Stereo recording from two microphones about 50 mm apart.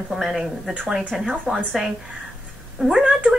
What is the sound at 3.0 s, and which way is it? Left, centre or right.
Speech, right.